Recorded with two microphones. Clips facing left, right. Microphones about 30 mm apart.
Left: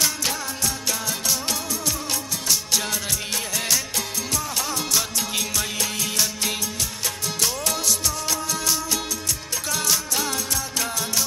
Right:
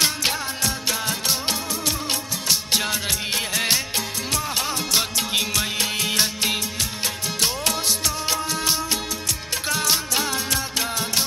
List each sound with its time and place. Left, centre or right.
0.0 s music: right
1.0 s music of bollywood: right
2.4 s music: right